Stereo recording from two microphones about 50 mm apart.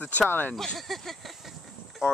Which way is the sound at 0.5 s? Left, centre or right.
Centre.